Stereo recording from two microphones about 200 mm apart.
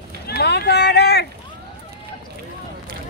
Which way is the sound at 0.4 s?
55° left (ahead or behind).